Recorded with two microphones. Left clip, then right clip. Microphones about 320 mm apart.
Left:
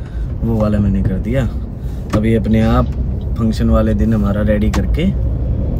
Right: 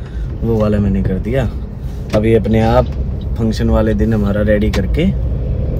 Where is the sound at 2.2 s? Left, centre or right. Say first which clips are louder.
Right 5 dB; right.